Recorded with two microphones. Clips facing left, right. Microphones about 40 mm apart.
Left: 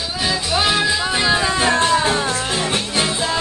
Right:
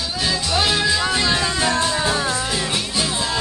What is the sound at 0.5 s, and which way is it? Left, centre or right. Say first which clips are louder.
Music: left 1 dB; centre.